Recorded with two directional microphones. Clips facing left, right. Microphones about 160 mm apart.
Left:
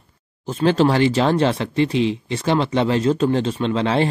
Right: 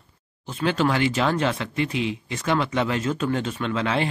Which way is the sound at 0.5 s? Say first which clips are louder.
Left 6 dB; 40° left (ahead or behind).